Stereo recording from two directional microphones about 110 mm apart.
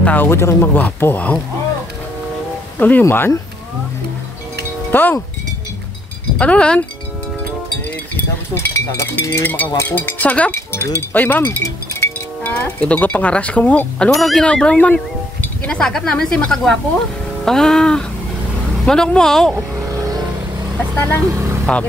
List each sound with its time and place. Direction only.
0.0 s speech: 15° left (ahead or behind)
2.8 s speech: 15° left (ahead or behind)
4.9 s speech: 15° left (ahead or behind)
6.3 s speech: 10° left (ahead or behind)
8.5 s speech: 25° left (ahead or behind)
11.6 s livestock: 25° left (ahead or behind)
14.1 s speech: 5° left (ahead or behind)
20.9 s speech: 20° left (ahead or behind)
21.3 s speech: 25° right (ahead or behind)